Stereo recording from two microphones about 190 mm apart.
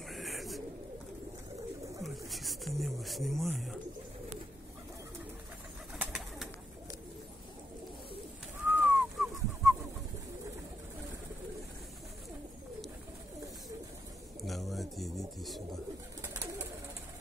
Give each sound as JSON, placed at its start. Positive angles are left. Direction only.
{"t": 0.1, "sound": "bird", "side_deg": 0}
{"t": 2.0, "sound": "bird", "side_deg": 0}
{"t": 5.9, "sound": "bird", "side_deg": 0}
{"t": 8.6, "sound": "bird", "side_deg": -10}
{"t": 14.4, "sound": "pigeon", "side_deg": 0}